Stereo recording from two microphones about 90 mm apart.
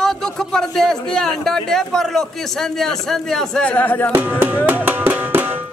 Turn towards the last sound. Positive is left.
turn(degrees=-20)  # may be behind; listen again after turning